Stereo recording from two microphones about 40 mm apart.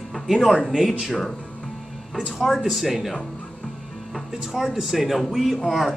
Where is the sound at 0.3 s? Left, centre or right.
Centre.